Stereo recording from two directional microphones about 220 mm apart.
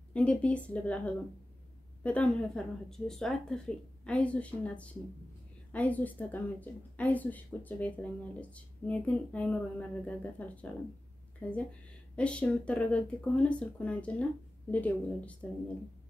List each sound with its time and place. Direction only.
0.1 s speech: 5° left (ahead or behind)